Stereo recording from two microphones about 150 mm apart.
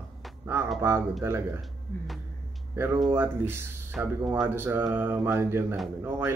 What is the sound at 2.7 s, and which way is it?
Speech, 15° right (ahead or behind).